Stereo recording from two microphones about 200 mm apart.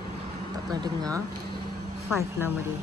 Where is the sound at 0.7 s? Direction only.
20° right (ahead or behind).